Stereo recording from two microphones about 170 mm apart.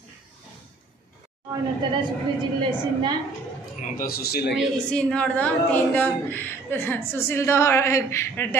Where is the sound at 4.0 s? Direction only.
65° left (ahead or behind).